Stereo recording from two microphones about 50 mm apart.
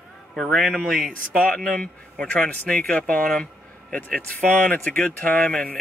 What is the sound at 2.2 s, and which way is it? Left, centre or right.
Speech, left.